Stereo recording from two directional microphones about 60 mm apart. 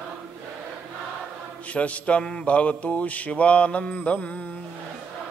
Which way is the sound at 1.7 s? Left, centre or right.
Left.